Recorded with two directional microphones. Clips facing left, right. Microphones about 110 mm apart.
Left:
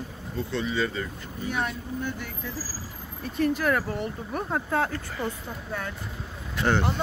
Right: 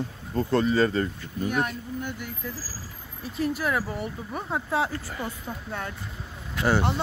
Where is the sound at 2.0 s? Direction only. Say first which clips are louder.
Left 1 dB; 10° right (ahead or behind).